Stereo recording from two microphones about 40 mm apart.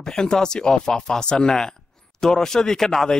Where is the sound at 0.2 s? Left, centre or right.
Centre.